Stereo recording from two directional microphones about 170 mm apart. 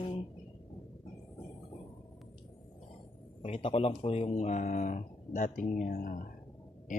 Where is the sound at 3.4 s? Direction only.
35° left (ahead or behind).